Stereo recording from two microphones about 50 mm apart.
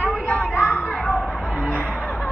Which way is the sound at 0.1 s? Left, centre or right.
Left.